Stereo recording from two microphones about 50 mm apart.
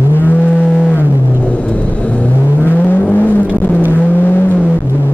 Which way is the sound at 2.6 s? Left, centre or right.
Left.